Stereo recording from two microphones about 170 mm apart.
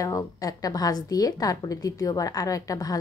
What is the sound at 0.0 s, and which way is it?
A woman's voice, 20° left (ahead or behind).